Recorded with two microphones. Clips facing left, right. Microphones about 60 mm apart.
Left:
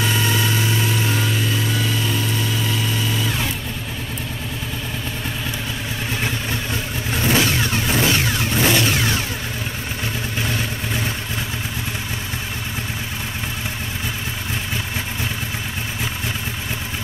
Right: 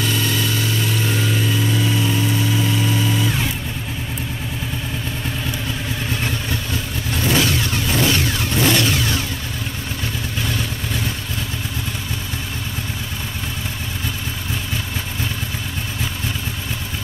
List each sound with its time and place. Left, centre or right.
0.0 s vehicle: centre
1.8 s vehicle: centre
3.2 s vehicle: centre
7.2 s vehicle: centre